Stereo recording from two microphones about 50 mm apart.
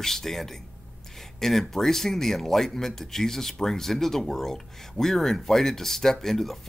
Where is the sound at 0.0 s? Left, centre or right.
Centre.